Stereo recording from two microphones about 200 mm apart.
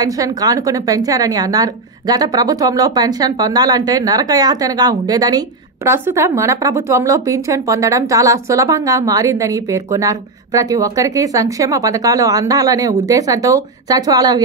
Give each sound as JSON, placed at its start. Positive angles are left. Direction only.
{"t": 0.0, "sound": "a woman's voice", "side_deg": -20}